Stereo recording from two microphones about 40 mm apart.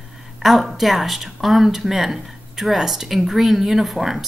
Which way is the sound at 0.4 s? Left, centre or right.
Centre.